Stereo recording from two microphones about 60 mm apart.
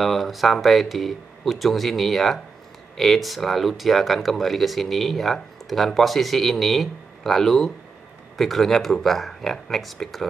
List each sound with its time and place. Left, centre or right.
0.0 s speech: centre